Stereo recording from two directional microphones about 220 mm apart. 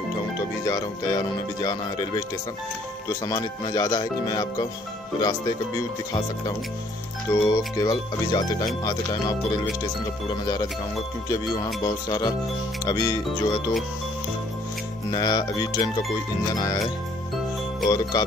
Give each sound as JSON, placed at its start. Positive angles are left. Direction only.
{"t": 0.7, "sound": "speech", "side_deg": 15}
{"t": 7.2, "sound": "speech", "side_deg": 15}
{"t": 15.0, "sound": "speech", "side_deg": 20}
{"t": 17.8, "sound": "speech", "side_deg": 20}